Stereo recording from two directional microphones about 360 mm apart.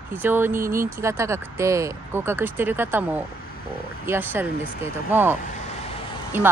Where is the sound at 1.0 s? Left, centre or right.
Centre.